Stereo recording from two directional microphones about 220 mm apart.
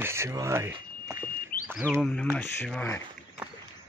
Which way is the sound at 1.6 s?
5° left (ahead or behind).